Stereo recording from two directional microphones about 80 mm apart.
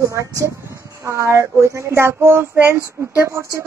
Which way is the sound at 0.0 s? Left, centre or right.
Right.